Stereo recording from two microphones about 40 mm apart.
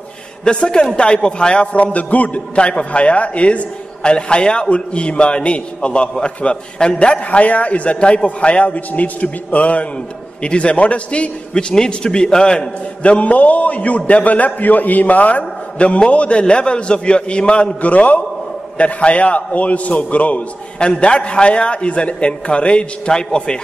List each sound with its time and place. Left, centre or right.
0.5 s a man's voice: left
13.0 s a man's voice: left
20.8 s a man's voice: left